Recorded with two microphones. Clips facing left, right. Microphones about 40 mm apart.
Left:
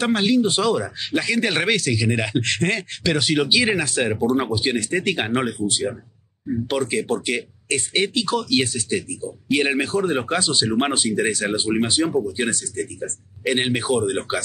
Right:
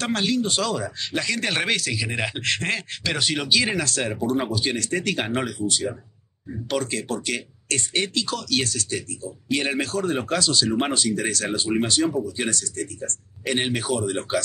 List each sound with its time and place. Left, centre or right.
0.0 s speech: centre
3.4 s speech: centre